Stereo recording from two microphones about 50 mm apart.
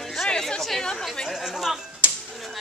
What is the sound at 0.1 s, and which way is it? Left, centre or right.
Chatter, centre.